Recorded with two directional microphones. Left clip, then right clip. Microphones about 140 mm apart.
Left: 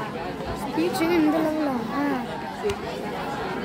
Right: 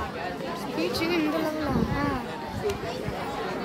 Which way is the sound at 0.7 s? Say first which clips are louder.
Left 4 dB; 60° left (ahead or behind).